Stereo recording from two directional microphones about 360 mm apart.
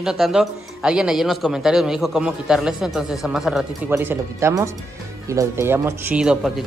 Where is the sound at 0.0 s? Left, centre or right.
Centre.